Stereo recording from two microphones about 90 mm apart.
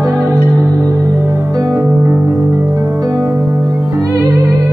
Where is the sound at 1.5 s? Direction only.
40° right (ahead or behind).